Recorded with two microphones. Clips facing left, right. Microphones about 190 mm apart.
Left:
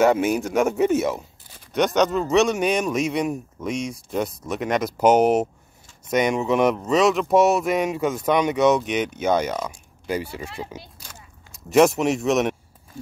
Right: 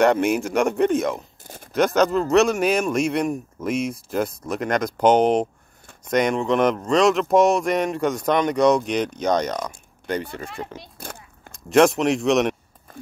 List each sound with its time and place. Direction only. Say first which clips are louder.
0.0 s speech: even; centre (ahead or behind)
1.4 s a sound: right 9 dB; 50° right (ahead or behind)
1.7 s speech: right 1 dB; centre (ahead or behind)
11.0 s biting: right 8 dB; 55° right (ahead or behind)
11.5 s speech: even; centre (ahead or behind)